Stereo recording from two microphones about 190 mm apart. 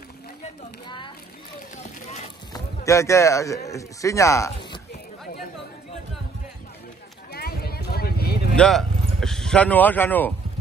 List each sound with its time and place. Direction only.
0.8 s a child's voice: 25° left (ahead or behind)
1.8 s speech: 35° left (ahead or behind)
2.5 s speech: 15° left (ahead or behind)
7.3 s vehicle: 55° left (ahead or behind)
8.5 s speech: 5° left (ahead or behind)